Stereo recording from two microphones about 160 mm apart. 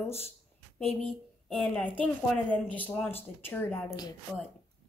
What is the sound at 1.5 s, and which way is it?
A woman's voice, 5° left (ahead or behind).